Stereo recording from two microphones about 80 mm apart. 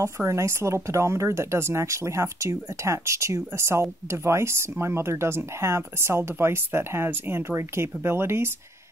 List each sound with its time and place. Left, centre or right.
0.0 s speech: right